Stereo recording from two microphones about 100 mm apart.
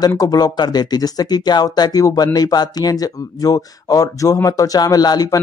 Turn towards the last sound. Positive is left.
turn(degrees=40)  # may be behind; listen again after turning